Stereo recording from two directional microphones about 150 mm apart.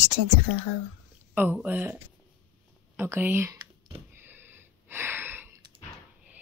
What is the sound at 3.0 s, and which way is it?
Speech, 15° right (ahead or behind).